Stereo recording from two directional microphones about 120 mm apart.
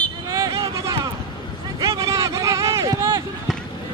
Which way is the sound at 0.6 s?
25° right (ahead or behind).